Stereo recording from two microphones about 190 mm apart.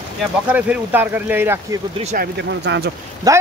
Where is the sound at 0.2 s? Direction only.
5° right (ahead or behind).